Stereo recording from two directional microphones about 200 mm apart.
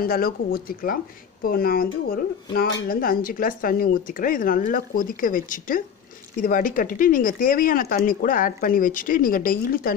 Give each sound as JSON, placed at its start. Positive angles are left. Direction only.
{"t": 0.0, "sound": "speech", "side_deg": 50}